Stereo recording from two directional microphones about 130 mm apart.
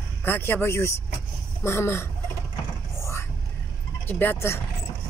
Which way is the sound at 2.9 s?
20° left (ahead or behind).